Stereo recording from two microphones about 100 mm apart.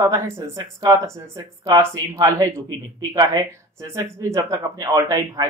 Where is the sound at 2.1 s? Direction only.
35° right (ahead or behind).